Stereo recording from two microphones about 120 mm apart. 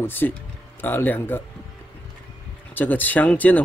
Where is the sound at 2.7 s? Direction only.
15° left (ahead or behind).